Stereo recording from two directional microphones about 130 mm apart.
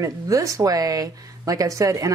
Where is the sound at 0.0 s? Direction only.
25° right (ahead or behind).